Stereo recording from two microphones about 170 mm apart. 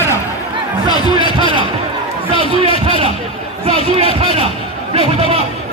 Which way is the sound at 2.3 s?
30° left (ahead or behind).